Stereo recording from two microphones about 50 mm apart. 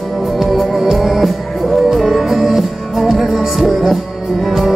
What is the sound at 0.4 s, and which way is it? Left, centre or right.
Music, centre.